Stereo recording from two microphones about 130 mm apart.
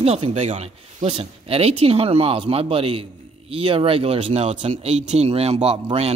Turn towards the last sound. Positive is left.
turn(degrees=-50)  # may be behind; listen again after turning